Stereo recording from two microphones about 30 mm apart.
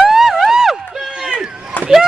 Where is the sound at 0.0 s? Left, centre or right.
Centre.